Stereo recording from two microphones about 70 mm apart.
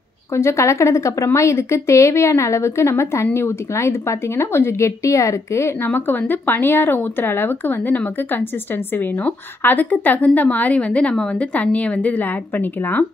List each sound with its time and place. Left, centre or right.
0.3 s a woman's voice: left
5.9 s a woman's voice: left